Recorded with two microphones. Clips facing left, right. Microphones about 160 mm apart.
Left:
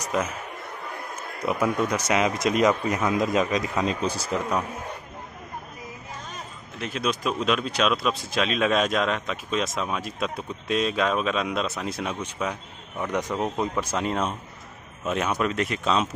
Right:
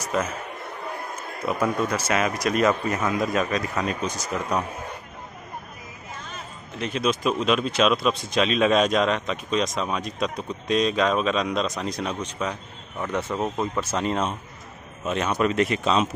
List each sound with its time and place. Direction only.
0.0 s speech: 15° left (ahead or behind)
1.4 s speech: 15° left (ahead or behind); by 4.4 s 30° left (ahead or behind)
6.8 s speech: centre (ahead or behind)